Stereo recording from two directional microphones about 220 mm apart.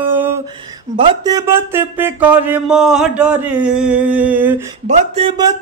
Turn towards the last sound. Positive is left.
turn(degrees=-30)  # may be behind; listen again after turning